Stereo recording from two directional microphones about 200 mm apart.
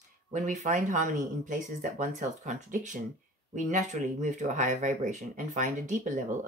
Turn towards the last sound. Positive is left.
turn(degrees=-40)  # may be behind; listen again after turning